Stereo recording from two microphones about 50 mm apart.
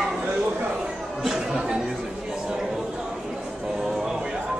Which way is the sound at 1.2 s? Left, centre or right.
Centre.